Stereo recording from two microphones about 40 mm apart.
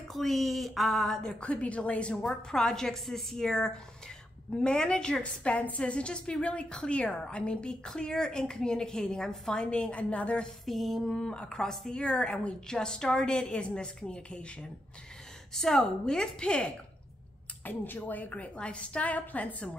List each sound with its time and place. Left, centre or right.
0.1 s speech: centre
1.4 s a woman's voice: left
2.2 s a woman's voice: centre
5.2 s a woman's voice: left
10.6 s speech: centre
11.1 s a woman's voice: left
11.9 s a woman's voice: left
15.5 s a woman's voice: centre
16.4 s a woman's voice: left
17.6 s speech: left
18.6 s a woman's voice: left